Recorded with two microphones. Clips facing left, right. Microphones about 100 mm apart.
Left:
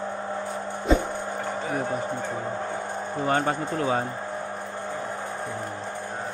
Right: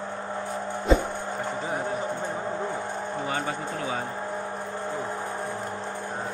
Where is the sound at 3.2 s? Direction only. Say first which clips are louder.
Left 9 dB; 45° left (ahead or behind).